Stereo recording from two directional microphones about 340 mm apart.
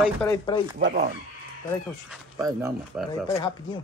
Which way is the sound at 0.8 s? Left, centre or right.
Right.